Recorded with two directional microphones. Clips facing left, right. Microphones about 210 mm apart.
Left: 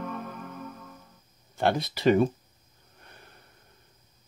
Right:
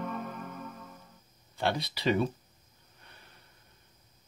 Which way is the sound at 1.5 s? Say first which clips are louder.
Left 5 dB; 50° left (ahead or behind).